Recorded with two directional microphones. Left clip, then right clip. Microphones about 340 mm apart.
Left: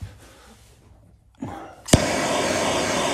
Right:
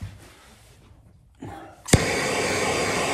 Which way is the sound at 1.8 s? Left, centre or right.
Centre.